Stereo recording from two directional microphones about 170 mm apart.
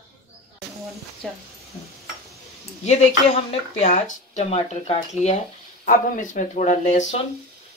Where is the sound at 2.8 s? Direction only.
40° left (ahead or behind).